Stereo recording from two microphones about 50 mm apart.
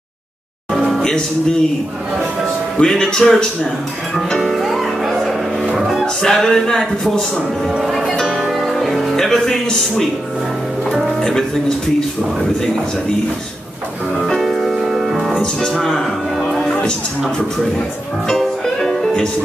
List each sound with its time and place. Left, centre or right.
1.0 s a man's voice: centre
2.8 s a man's voice: centre
4.3 s music: centre
6.2 s a man's voice: centre
7.8 s speech: centre
11.1 s speech: centre
14.2 s music: centre
15.6 s music: centre
18.3 s music: centre